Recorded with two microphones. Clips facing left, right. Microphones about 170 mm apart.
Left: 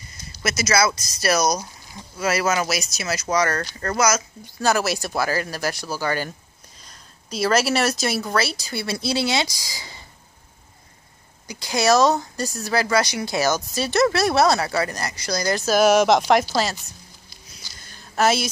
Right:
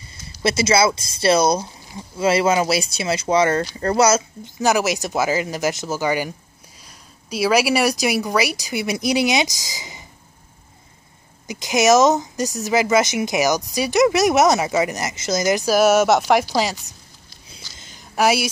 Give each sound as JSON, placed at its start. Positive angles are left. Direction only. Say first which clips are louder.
{"t": 0.4, "sound": "speech", "louder": "right 4 dB", "side_deg": -30}
{"t": 4.6, "sound": "speech", "louder": "right 2 dB", "side_deg": -15}
{"t": 11.4, "sound": "speech", "louder": "right 4 dB", "side_deg": -20}
{"t": 15.6, "sound": "speech", "louder": "even", "side_deg": -5}
{"t": 17.5, "sound": "a sound", "louder": "right 3 dB", "side_deg": -20}